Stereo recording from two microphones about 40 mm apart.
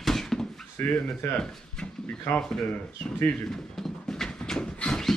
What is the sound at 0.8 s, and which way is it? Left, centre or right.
Speech, left.